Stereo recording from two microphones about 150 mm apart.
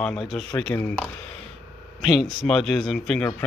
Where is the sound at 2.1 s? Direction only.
Centre (ahead or behind).